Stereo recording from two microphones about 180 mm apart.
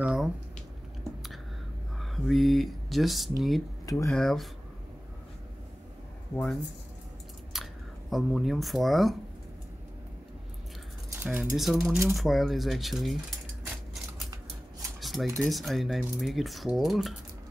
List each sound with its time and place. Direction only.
0.0 s a sound: 5° right (ahead or behind)
2.0 s speech: centre (ahead or behind)
3.8 s speech: 15° left (ahead or behind)
4.1 s speech: centre (ahead or behind)
6.3 s speech: 5° left (ahead or behind)
7.5 s chewing: centre (ahead or behind)
8.1 s speech: centre (ahead or behind)
11.2 s speech: 10° right (ahead or behind)
15.0 s dishes: centre (ahead or behind)
15.4 s speech: centre (ahead or behind)